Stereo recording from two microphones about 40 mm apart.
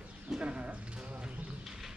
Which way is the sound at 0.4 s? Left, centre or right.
Right.